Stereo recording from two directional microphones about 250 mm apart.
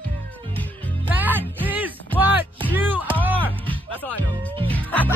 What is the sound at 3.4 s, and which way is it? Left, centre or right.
Music, centre.